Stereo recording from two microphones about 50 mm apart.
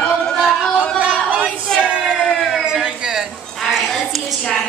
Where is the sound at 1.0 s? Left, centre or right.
Right.